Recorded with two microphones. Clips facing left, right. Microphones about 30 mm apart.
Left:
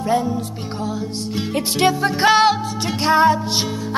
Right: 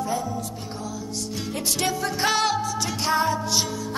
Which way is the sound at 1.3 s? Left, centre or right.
Left.